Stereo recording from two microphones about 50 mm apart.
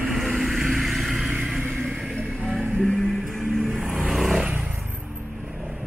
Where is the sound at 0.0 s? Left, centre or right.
Centre.